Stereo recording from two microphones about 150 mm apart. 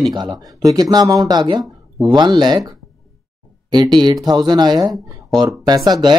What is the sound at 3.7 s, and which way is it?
Speech, 30° right (ahead or behind).